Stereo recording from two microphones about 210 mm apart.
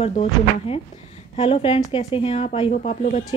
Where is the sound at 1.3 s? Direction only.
25° left (ahead or behind).